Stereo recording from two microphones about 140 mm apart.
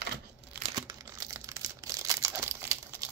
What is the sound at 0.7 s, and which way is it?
Crumpling, 30° right (ahead or behind).